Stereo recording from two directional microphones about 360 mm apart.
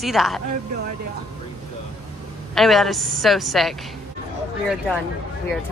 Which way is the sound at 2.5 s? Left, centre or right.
Centre.